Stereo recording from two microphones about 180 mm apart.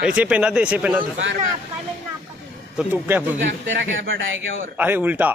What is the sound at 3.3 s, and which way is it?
A man's voice, 85° right.